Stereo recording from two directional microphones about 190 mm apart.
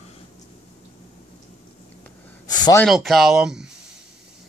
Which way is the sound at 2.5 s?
20° left (ahead or behind).